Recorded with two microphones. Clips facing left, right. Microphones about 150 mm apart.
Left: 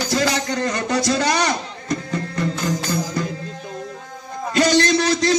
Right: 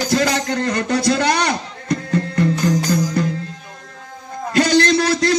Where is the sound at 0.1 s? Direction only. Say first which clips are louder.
Right 2 dB; 55° right (ahead or behind).